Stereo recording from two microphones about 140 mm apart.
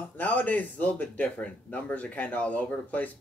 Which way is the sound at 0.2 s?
10° left (ahead or behind).